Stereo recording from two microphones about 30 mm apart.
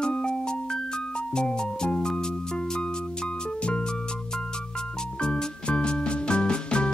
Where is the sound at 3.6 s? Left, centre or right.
Left.